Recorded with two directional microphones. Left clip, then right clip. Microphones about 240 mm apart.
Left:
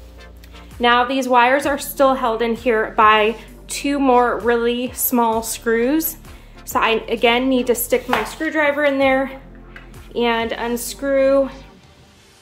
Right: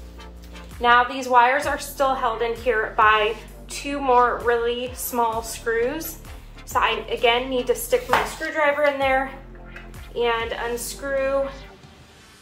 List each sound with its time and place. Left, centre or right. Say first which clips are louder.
0.7 s a woman's voice: left 2 dB; left